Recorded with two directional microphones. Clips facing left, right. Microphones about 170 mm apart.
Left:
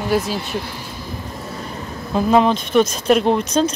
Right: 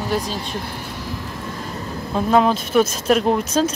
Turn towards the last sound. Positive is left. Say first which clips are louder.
# left 1 dB
turn(degrees=-5)  # may be behind; listen again after turning